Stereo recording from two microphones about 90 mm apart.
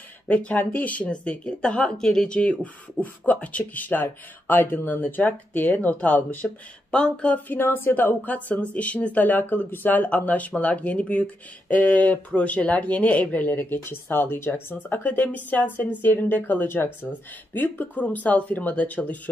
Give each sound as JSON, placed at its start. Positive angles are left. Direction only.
{"t": 0.3, "sound": "speech", "side_deg": 15}